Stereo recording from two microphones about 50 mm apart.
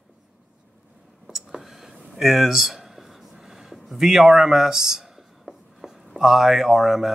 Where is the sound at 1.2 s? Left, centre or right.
Centre.